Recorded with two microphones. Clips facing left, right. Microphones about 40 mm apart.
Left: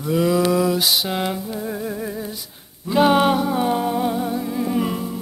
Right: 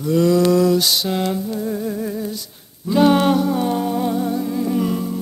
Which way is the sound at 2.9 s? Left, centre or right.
Centre.